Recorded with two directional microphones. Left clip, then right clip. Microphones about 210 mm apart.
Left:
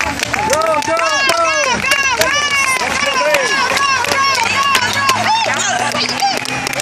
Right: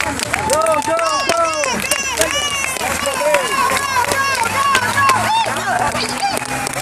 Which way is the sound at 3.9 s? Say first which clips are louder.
Left 3 dB; 45° left (ahead or behind).